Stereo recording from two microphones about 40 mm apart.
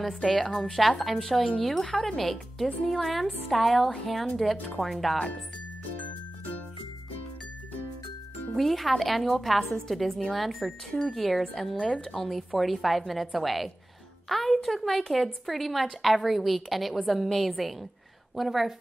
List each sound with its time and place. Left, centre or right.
0.0 s a woman's voice: centre
1.9 s speech: centre
2.1 s a woman's voice: centre
8.5 s a woman's voice: centre